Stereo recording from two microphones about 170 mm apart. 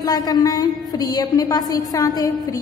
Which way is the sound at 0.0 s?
25° left (ahead or behind).